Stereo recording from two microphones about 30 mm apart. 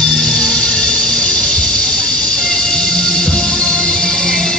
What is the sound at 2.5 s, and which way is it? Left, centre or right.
Music, left.